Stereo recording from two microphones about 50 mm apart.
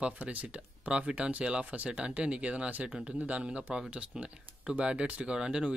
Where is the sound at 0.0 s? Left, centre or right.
Right.